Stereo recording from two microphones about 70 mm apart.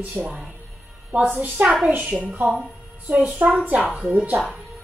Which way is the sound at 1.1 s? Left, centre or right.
Right.